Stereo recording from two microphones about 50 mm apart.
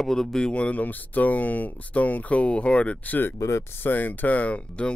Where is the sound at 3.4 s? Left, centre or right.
Left.